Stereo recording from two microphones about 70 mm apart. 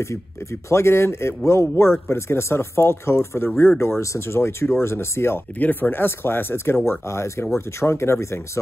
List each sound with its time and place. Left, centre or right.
0.0 s speech: left